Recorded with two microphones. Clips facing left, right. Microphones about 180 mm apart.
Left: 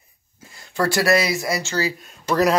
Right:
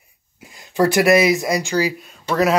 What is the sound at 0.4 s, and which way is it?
Speech, 15° right (ahead or behind).